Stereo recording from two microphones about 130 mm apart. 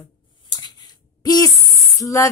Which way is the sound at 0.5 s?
30° left (ahead or behind).